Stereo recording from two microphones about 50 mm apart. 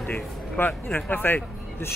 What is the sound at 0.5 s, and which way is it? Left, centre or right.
Speech, left.